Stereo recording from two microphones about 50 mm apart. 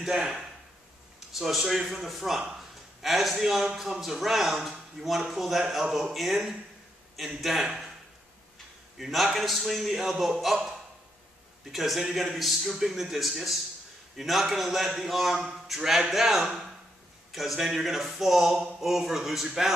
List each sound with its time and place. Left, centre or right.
0.0 s a man's voice: centre
8.9 s a man's voice: centre
11.7 s a man's voice: centre